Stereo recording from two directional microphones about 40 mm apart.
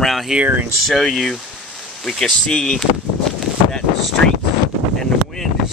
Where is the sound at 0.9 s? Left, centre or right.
Centre.